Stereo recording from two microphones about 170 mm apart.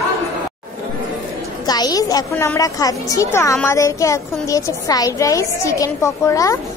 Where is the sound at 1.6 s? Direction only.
25° left (ahead or behind).